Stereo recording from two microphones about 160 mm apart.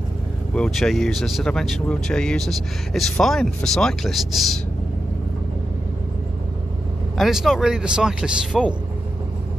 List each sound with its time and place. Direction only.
0.6 s speech: centre (ahead or behind)
7.2 s speech: centre (ahead or behind)